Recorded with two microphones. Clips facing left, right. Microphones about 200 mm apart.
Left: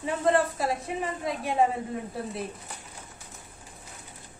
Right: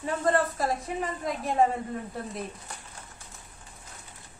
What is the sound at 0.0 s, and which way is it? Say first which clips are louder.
A woman's voice: left 1 dB; centre (ahead or behind).